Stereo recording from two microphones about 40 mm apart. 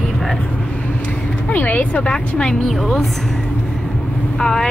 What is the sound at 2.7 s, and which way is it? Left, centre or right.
Speech, centre.